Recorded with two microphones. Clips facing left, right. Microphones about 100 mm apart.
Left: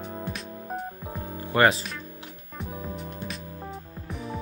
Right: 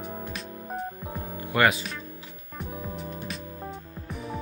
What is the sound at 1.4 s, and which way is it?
Music, 30° left (ahead or behind).